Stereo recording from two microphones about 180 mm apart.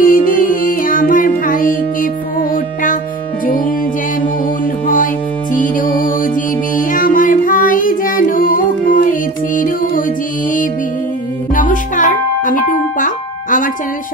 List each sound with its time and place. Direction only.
0.0 s music: 50° left (ahead or behind)
4.8 s music: 50° left (ahead or behind)
11.5 s music: 45° left (ahead or behind)